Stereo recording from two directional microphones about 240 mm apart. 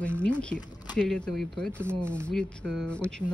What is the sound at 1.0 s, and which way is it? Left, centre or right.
Speech, centre.